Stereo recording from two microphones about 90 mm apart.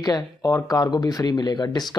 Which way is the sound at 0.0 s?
40° left (ahead or behind).